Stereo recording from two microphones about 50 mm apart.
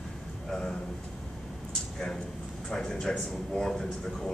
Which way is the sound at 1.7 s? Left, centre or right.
Centre.